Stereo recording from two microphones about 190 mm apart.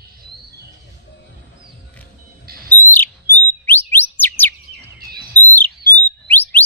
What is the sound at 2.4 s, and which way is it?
Owl, 50° right (ahead or behind).